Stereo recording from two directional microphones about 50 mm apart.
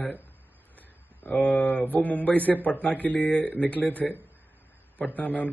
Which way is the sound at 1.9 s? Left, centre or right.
Left.